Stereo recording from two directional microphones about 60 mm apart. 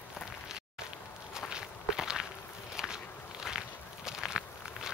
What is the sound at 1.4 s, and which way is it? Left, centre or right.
Walk, centre.